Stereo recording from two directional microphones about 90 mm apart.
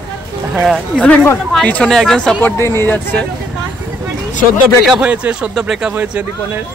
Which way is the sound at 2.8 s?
25° left (ahead or behind).